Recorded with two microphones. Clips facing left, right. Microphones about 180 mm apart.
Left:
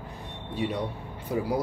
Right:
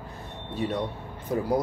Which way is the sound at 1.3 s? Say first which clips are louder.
Right 2 dB; 10° left (ahead or behind).